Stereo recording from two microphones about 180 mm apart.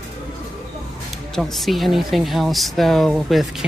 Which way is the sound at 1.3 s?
Centre (ahead or behind).